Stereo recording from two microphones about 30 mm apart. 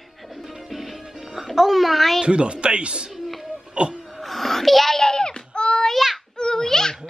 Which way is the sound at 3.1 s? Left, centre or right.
Centre.